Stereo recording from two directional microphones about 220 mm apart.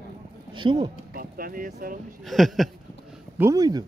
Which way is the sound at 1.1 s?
40° right (ahead or behind).